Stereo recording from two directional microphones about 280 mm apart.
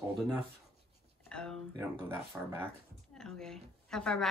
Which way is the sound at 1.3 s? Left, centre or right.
Centre.